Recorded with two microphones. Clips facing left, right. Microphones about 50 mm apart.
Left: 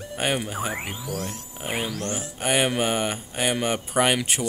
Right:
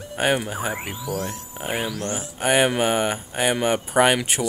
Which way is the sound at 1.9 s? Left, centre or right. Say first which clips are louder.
Right 2 dB; right.